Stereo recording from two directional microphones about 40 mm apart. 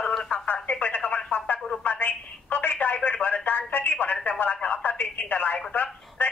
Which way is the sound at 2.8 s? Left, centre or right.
Left.